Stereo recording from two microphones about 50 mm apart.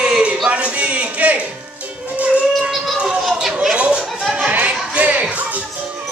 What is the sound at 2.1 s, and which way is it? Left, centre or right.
Music, right.